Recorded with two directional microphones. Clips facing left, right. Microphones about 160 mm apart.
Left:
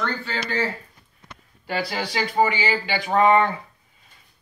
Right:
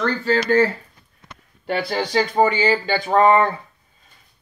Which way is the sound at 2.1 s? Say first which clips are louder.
Right 4 dB; 45° right (ahead or behind).